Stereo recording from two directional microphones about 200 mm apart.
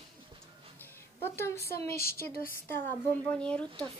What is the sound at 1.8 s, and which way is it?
Speech, 50° left (ahead or behind).